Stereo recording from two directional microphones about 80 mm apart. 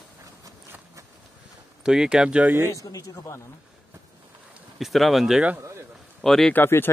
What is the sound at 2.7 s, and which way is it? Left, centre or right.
Speech, left.